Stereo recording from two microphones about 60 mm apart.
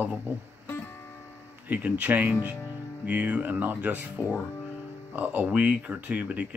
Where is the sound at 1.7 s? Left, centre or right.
Right.